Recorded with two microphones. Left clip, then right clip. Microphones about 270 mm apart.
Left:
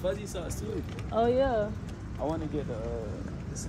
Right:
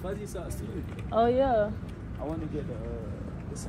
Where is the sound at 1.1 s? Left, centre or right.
Centre.